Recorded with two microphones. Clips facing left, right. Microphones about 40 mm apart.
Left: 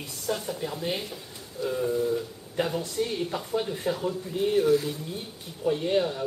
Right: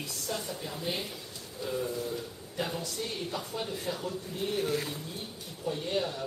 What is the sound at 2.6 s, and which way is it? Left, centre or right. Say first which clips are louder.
Speech: left 6 dB; left.